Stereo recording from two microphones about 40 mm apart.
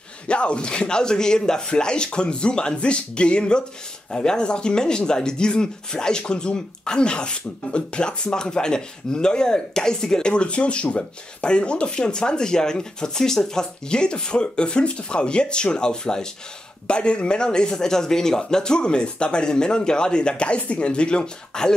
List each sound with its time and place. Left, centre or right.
0.3 s speech: left